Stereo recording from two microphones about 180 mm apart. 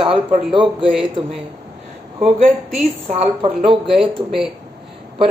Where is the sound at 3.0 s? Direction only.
40° right (ahead or behind).